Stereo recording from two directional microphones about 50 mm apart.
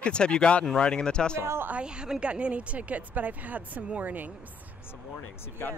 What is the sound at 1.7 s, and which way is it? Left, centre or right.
Speech, centre.